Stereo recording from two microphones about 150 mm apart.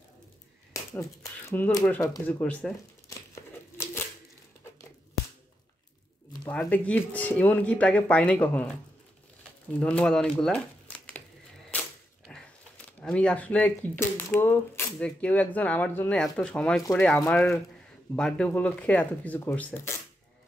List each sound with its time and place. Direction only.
0.9 s speech: 15° left (ahead or behind)
3.3 s crumpling: 15° left (ahead or behind)
6.5 s speech: 10° left (ahead or behind)
9.8 s speech: 10° left (ahead or behind)
12.3 s biting: 5° left (ahead or behind)
13.0 s speech: 5° left (ahead or behind)